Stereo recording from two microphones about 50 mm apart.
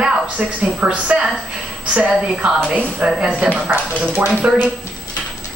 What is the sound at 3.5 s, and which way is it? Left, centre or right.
Speech, right.